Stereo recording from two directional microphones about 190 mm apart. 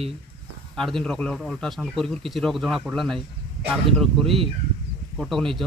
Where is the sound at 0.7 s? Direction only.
Centre (ahead or behind).